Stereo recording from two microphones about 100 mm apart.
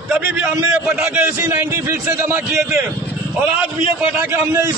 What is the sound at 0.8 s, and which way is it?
Speech, 5° right (ahead or behind).